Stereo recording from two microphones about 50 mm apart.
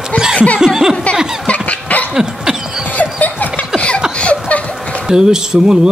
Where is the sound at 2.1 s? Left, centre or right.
Centre.